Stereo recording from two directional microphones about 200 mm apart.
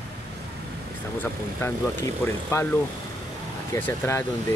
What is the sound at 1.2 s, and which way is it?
Speech, 10° left (ahead or behind).